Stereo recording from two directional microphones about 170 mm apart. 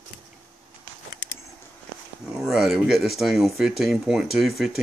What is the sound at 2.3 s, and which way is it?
Speech, 5° right (ahead or behind).